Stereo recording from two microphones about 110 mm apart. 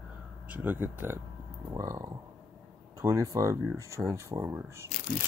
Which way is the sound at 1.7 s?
30° right (ahead or behind).